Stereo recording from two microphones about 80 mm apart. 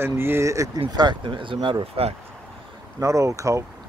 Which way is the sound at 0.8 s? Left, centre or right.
Right.